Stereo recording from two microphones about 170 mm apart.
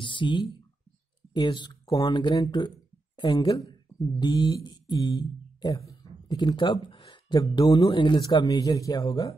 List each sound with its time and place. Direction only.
0.0 s speech: 30° left (ahead or behind)